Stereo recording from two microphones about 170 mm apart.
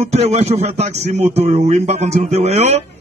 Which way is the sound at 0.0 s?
40° right (ahead or behind).